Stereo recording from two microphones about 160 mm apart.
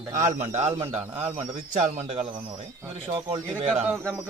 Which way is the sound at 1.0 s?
10° right (ahead or behind).